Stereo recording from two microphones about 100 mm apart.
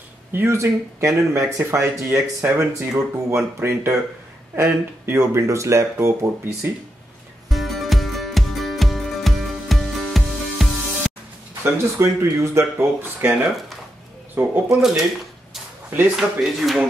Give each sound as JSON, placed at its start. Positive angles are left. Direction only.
{"t": 0.3, "sound": "speech", "side_deg": -25}
{"t": 2.4, "sound": "speech", "side_deg": -15}
{"t": 2.7, "sound": "speech", "side_deg": -30}
{"t": 7.4, "sound": "music", "side_deg": 0}
{"t": 11.6, "sound": "speech", "side_deg": -30}
{"t": 14.7, "sound": "speech", "side_deg": -5}
{"t": 16.2, "sound": "speech", "side_deg": 0}